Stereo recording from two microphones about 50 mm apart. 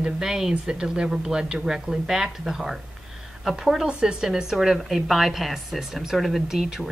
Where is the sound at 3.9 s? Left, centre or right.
Centre.